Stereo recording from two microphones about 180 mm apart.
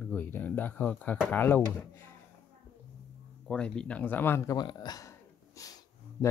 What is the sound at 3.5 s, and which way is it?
Speech, 5° left (ahead or behind).